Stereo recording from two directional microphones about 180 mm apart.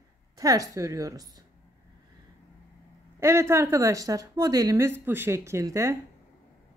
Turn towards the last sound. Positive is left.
turn(degrees=-15)  # may be behind; listen again after turning